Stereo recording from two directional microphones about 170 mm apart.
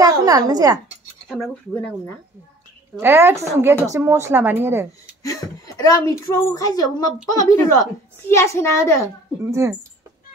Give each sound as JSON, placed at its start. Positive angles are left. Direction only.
{"t": 0.0, "sound": "a woman's voice", "side_deg": -20}
{"t": 1.3, "sound": "speech", "side_deg": 0}
{"t": 3.0, "sound": "speech", "side_deg": -15}
{"t": 5.2, "sound": "a woman's voice", "side_deg": 20}
{"t": 9.4, "sound": "speech", "side_deg": -15}